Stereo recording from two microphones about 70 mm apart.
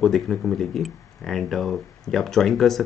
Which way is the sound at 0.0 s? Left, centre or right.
Centre.